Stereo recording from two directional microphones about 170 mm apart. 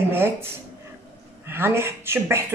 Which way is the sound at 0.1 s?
15° right (ahead or behind).